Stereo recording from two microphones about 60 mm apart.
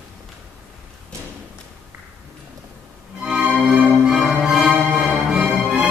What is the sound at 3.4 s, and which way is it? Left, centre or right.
Music, right.